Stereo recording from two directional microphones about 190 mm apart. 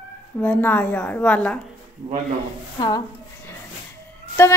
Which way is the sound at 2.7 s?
20° left (ahead or behind).